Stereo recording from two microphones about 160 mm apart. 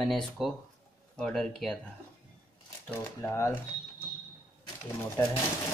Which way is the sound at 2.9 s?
15° left (ahead or behind).